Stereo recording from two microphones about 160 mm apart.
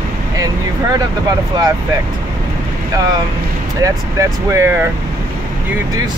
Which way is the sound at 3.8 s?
20° right (ahead or behind).